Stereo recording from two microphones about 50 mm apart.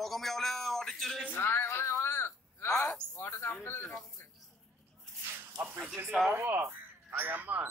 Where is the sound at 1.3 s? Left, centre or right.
Left.